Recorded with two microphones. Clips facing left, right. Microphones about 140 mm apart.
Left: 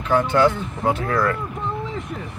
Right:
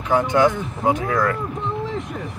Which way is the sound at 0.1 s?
15° right (ahead or behind).